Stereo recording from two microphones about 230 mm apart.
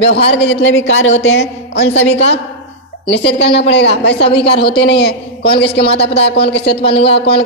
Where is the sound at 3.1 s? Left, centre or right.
Left.